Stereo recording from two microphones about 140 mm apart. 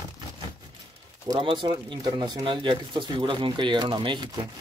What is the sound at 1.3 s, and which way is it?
Speech, 35° right (ahead or behind).